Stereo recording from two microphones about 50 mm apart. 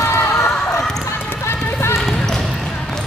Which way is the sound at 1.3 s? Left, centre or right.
Left.